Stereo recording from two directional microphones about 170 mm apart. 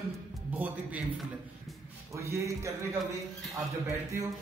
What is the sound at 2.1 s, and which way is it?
A man's voice, 15° right (ahead or behind).